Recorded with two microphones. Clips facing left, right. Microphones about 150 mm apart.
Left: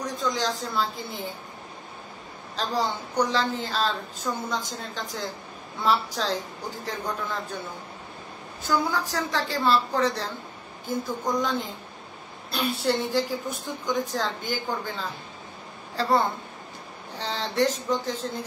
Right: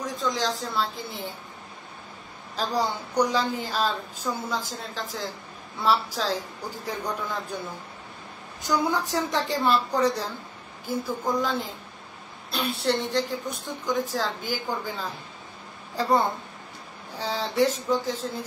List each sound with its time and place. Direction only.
0.0 s a woman's voice: centre (ahead or behind)
2.5 s a woman's voice: 10° right (ahead or behind)
8.6 s a woman's voice: 20° right (ahead or behind)
17.2 s a woman's voice: 5° right (ahead or behind)